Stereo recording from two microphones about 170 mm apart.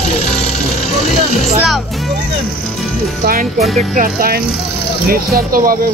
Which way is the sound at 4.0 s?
60° right (ahead or behind).